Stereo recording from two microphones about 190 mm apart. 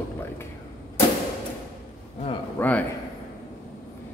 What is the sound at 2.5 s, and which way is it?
Speech, 10° left (ahead or behind).